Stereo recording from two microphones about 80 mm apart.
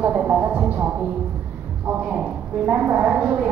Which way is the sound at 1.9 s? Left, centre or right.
Centre.